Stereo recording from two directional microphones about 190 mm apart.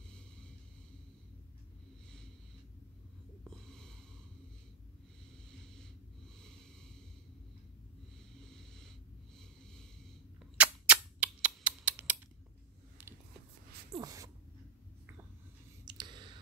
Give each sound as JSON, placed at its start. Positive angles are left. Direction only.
{"t": 3.4, "sound": "snort", "side_deg": 5}
{"t": 5.5, "sound": "snort", "side_deg": 5}
{"t": 8.4, "sound": "snort", "side_deg": 5}
{"t": 9.4, "sound": "snoring", "side_deg": 5}
{"t": 10.6, "sound": "a sound", "side_deg": -5}
{"t": 13.9, "sound": "speech", "side_deg": -20}
{"t": 15.8, "sound": "clicking", "side_deg": -25}